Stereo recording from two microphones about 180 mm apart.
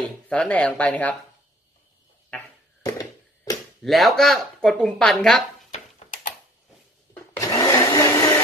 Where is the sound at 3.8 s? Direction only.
Centre (ahead or behind).